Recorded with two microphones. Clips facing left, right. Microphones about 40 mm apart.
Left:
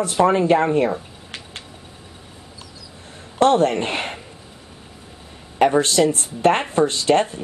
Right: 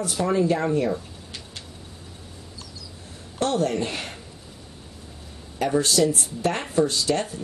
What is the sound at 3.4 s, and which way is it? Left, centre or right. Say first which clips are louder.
Speech: left 7 dB; left.